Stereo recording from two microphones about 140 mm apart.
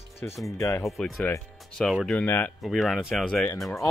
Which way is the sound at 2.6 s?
Centre (ahead or behind).